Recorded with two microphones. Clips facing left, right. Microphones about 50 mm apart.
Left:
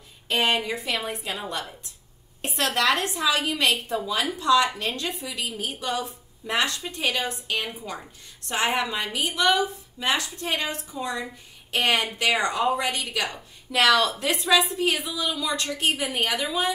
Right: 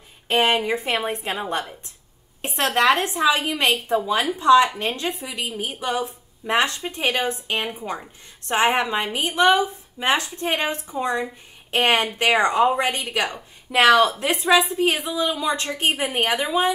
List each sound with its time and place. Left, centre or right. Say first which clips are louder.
0.3 s a woman's voice: right 4 dB; right